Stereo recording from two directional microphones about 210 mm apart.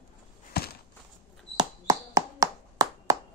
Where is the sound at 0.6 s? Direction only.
50° left (ahead or behind).